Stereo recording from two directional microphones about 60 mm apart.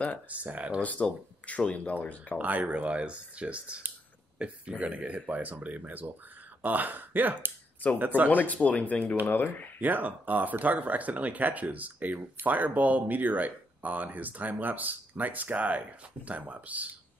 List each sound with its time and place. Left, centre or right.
0.3 s speech: right
0.7 s speech: left
2.3 s speech: right
8.3 s speech: left
9.8 s speech: right